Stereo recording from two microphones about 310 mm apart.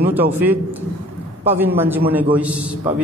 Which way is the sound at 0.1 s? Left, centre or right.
Centre.